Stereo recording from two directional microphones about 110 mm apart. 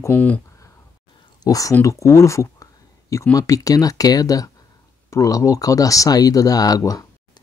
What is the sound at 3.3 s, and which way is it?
Speech, 30° left (ahead or behind).